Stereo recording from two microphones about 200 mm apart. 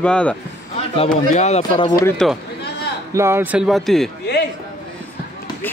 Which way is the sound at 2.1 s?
5° left (ahead or behind).